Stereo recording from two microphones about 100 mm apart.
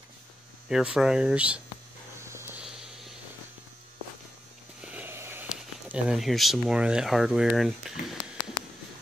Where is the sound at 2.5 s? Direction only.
5° right (ahead or behind).